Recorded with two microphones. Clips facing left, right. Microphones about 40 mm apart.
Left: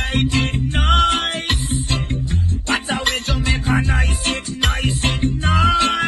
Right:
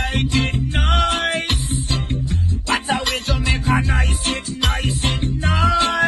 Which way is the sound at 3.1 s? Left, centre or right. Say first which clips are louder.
Left 1 dB; left.